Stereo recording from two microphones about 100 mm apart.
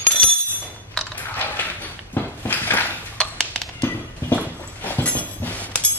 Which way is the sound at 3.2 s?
10° left (ahead or behind).